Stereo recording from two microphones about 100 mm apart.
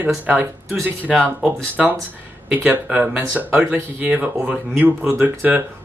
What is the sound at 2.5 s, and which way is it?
Speech, 20° right (ahead or behind).